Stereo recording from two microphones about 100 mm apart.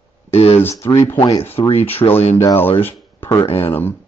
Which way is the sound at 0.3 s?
90° left.